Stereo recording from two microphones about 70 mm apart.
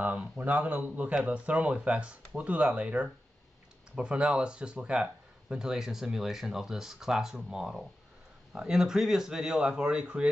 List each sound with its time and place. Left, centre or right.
0.0 s speech: centre